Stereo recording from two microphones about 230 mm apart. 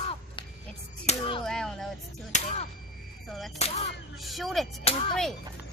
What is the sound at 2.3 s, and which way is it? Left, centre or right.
Speech, left.